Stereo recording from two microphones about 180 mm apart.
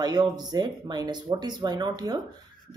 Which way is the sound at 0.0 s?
20° right (ahead or behind).